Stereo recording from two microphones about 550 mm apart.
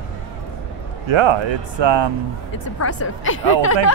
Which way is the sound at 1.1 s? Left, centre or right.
Right.